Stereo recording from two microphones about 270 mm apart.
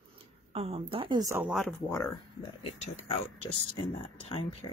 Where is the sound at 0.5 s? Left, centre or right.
Right; by 1.7 s centre.